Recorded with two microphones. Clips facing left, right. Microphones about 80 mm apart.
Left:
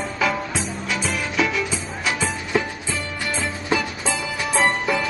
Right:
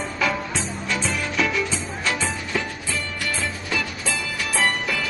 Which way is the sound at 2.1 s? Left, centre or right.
Centre.